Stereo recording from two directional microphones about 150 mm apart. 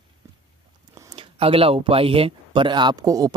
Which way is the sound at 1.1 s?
35° right (ahead or behind).